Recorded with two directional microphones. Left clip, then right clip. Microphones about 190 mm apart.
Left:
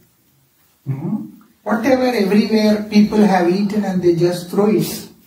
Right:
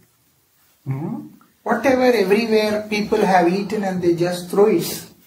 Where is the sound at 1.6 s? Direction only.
45° right (ahead or behind).